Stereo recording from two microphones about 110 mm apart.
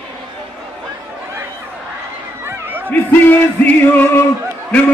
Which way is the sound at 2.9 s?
15° left (ahead or behind).